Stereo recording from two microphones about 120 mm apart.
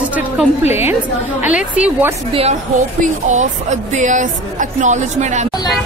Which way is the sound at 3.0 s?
90° right.